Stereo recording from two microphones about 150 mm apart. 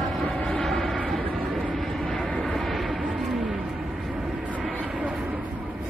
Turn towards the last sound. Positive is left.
turn(degrees=-5)  # may be behind; listen again after turning